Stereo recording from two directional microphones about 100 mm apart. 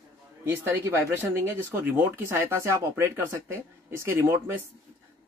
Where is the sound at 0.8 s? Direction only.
25° right (ahead or behind).